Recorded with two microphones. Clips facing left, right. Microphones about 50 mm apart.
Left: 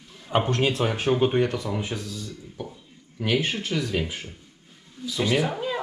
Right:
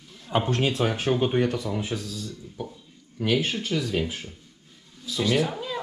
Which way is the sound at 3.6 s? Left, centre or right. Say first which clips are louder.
Even; centre.